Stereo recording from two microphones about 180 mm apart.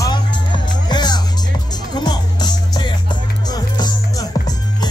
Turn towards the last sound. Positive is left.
turn(degrees=20)  # may be behind; listen again after turning